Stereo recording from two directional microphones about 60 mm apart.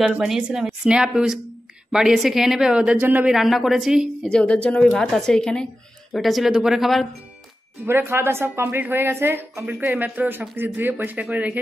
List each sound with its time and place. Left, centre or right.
0.4 s a woman's voice: centre
2.7 s a woman's voice: centre
3.0 s speech: right
3.3 s a woman's voice: centre
4.3 s speech: centre
4.8 s a woman's voice: centre
6.1 s a woman's voice: centre
7.8 s a woman's voice: right
8.1 s a woman's voice: right
9.7 s a woman's voice: right